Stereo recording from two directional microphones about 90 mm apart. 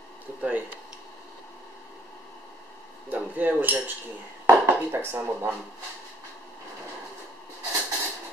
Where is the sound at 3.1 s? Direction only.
20° right (ahead or behind).